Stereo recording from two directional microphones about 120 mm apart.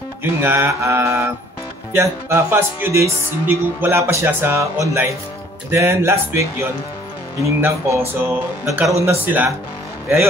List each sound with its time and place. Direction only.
0.4 s speech: 20° right (ahead or behind)
7.4 s speech: 20° right (ahead or behind)